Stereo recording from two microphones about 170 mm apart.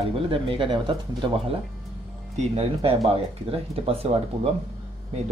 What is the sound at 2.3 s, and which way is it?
Speech, 35° right (ahead or behind).